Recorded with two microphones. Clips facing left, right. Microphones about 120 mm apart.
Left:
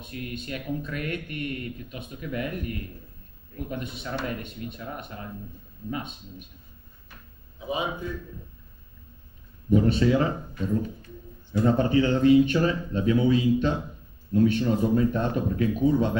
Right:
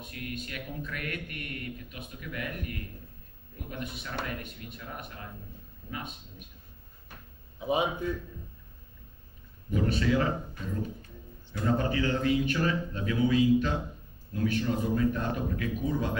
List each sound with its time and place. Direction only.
0.0 s speech: 25° left (ahead or behind)
9.7 s speech: 25° left (ahead or behind)